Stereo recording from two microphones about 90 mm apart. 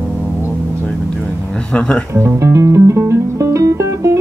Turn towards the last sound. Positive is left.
turn(degrees=-35)  # may be behind; listen again after turning